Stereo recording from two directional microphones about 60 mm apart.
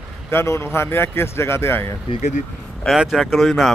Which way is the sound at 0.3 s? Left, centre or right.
Left.